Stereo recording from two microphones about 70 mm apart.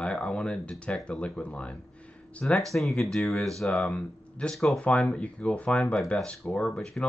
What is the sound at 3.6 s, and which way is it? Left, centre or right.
Speech, centre.